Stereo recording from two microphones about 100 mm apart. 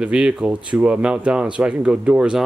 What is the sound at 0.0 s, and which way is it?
Speech, 10° right (ahead or behind).